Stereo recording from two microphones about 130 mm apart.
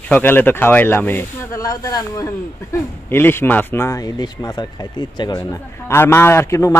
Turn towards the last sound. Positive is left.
turn(degrees=20)  # may be behind; listen again after turning